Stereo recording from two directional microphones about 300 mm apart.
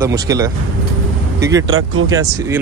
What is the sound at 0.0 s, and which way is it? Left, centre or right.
Speech, centre.